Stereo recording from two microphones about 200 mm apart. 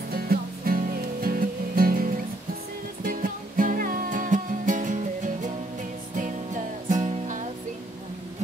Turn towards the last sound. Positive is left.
turn(degrees=-40)  # may be behind; listen again after turning